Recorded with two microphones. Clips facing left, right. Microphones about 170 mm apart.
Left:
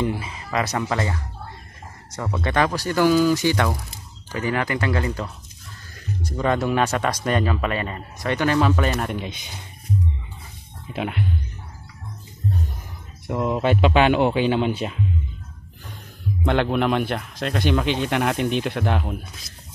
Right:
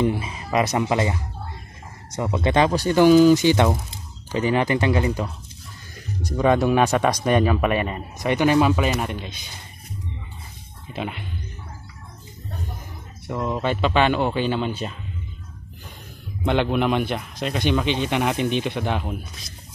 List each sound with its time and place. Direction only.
0.0 s speech: 20° right (ahead or behind)
6.3 s a man's voice: 15° right (ahead or behind)
10.9 s speech: 5° left (ahead or behind)
13.3 s a man's voice: 10° left (ahead or behind)
16.4 s speech: centre (ahead or behind)